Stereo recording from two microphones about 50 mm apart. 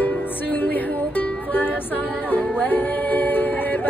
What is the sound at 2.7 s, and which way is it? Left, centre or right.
Music, left.